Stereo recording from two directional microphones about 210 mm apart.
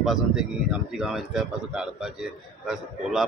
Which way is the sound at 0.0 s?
Centre (ahead or behind).